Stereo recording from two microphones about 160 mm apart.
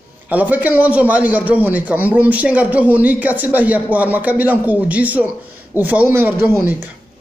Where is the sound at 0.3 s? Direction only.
10° right (ahead or behind).